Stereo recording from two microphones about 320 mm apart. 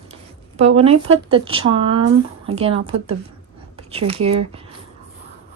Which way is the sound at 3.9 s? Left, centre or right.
Centre.